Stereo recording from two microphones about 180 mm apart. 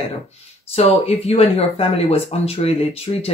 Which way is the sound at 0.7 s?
35° left (ahead or behind).